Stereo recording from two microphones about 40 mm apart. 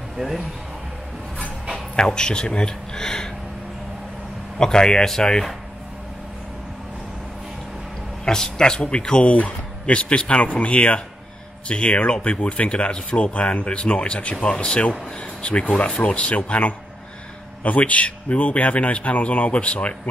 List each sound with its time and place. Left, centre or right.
0.2 s speech: centre
2.0 s speech: left
4.6 s speech: centre
8.3 s speech: centre; by 20.0 s left